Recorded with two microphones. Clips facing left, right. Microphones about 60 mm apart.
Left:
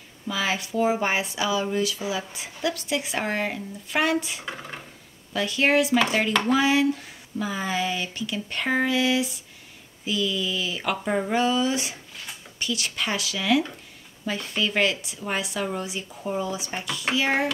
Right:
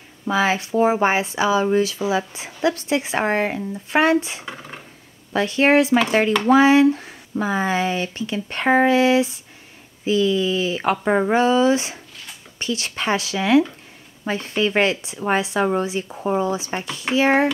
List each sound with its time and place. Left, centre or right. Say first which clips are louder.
0.3 s speech: right 7 dB; right
4.5 s a sound: right 1 dB; centre
5.3 s speech: right 6 dB; right